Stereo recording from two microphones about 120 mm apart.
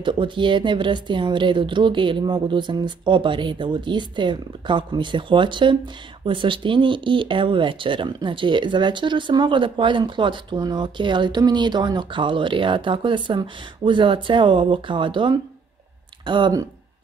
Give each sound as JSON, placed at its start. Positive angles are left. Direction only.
{"t": 0.0, "sound": "a woman's voice", "side_deg": -40}